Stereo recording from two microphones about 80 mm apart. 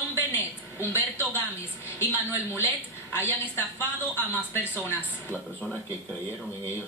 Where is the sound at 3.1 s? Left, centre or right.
Left.